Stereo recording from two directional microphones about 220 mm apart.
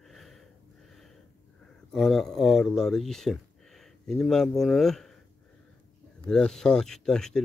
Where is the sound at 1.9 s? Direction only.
Centre (ahead or behind).